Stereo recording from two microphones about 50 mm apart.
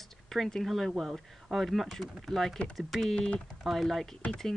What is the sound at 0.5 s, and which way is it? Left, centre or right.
Speech, centre.